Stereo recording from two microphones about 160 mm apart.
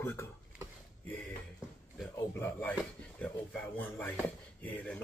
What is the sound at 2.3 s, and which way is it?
Speech, 15° left (ahead or behind).